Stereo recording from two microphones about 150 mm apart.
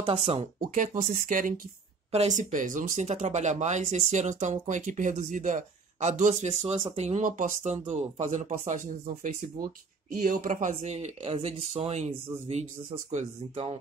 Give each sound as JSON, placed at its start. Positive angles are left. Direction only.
{"t": 0.1, "sound": "speech", "side_deg": -45}
{"t": 0.6, "sound": "speech", "side_deg": -60}
{"t": 7.2, "sound": "speech", "side_deg": -60}
{"t": 7.7, "sound": "speech", "side_deg": -50}
{"t": 10.1, "sound": "speech", "side_deg": -70}